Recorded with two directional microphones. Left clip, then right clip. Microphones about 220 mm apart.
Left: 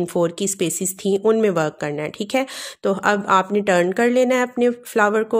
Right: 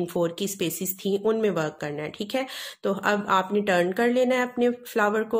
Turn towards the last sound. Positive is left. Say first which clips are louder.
# left 6 dB
turn(degrees=25)  # may be behind; listen again after turning